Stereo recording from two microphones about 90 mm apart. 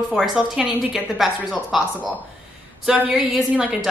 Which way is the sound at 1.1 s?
Centre (ahead or behind).